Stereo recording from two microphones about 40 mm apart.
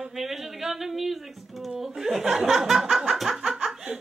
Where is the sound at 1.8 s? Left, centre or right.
Centre.